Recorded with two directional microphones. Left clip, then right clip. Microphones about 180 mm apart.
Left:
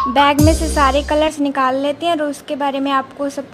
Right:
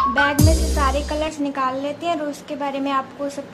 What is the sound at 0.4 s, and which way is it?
Music, centre (ahead or behind).